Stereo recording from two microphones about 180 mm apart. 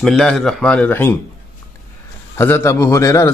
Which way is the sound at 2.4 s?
10° left (ahead or behind).